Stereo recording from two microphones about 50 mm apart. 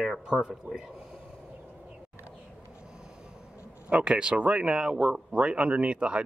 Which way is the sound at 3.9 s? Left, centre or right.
Right.